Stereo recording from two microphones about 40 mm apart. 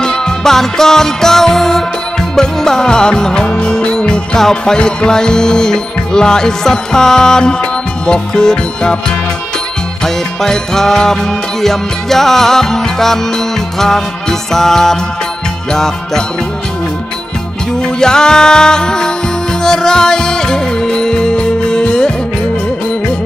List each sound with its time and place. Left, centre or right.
0.0 s music: centre
4.4 s music: centre
10.0 s music: centre
17.8 s music: centre